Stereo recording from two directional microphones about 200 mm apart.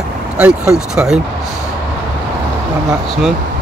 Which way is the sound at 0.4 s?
5° right (ahead or behind).